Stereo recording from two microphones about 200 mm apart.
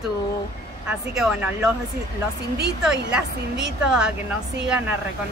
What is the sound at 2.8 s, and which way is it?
A woman's voice, 5° right (ahead or behind).